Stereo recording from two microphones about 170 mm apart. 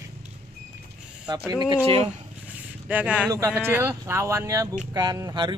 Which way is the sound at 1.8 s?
35° right (ahead or behind).